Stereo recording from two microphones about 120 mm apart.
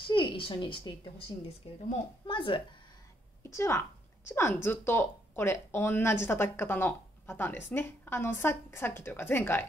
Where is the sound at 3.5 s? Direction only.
25° left (ahead or behind).